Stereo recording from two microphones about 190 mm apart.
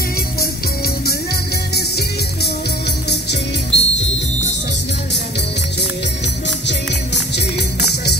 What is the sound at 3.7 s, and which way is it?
Music, 65° left (ahead or behind).